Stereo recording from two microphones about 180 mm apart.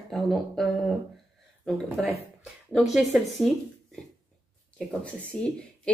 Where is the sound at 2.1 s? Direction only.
35° left (ahead or behind).